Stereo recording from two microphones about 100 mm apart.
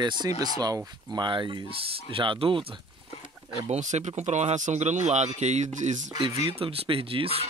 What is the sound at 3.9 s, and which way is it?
Speech, 90° right.